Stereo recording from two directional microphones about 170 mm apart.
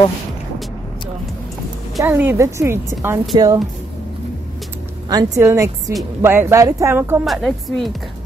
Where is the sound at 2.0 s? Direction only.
10° right (ahead or behind).